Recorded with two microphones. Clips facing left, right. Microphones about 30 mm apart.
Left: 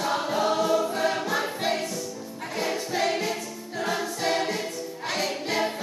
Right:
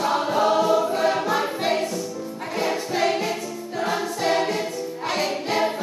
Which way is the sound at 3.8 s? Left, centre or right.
Centre.